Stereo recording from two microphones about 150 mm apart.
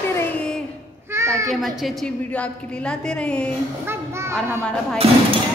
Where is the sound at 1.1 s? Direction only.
20° right (ahead or behind).